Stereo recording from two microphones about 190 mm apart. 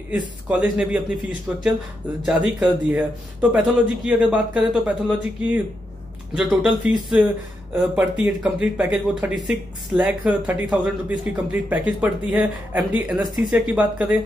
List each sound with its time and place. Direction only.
0.5 s speech: 5° right (ahead or behind)